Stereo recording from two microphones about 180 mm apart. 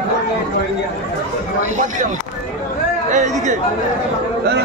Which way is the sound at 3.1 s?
40° right (ahead or behind).